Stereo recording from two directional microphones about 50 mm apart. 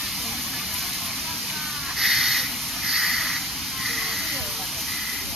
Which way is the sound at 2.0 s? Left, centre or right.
Centre.